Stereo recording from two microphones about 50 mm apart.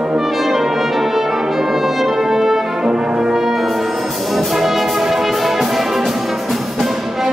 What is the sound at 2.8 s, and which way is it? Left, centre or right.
Brass instrument, centre.